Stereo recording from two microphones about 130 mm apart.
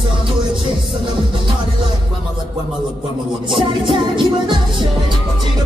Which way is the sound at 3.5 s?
40° right (ahead or behind).